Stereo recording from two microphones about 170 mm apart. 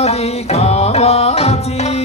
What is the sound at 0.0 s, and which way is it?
Music, 40° left (ahead or behind).